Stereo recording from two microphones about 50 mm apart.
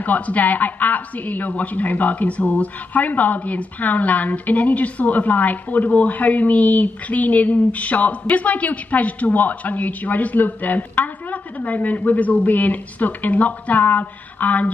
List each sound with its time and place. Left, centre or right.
0.0 s a woman's voice: left